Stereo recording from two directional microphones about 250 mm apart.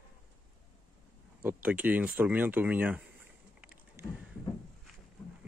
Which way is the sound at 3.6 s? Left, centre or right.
Centre.